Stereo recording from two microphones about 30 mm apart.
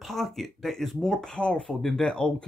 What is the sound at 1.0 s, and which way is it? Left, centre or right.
Speech, left.